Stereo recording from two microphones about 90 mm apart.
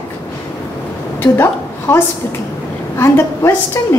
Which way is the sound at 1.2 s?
25° left (ahead or behind).